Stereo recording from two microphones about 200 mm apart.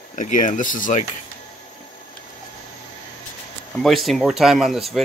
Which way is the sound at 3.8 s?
Centre (ahead or behind).